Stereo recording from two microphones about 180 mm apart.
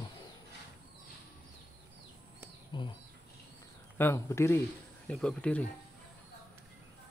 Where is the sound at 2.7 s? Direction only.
25° left (ahead or behind).